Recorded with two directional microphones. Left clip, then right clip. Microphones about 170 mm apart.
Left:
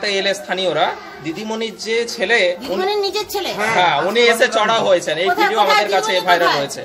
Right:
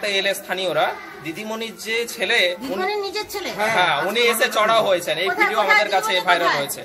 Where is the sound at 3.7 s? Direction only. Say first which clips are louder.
Left 5 dB; 20° left (ahead or behind).